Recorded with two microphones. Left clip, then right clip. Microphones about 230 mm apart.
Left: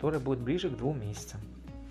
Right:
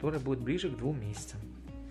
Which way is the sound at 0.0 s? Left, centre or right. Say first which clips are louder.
Left 3 dB; centre.